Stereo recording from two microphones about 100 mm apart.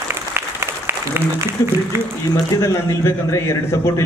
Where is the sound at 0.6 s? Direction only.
25° right (ahead or behind).